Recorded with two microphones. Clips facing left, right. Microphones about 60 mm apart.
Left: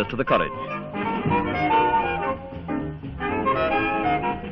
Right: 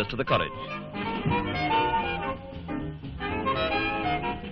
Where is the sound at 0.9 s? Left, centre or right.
Left.